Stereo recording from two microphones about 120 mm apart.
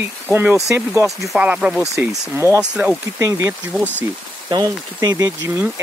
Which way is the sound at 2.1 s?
20° right (ahead or behind).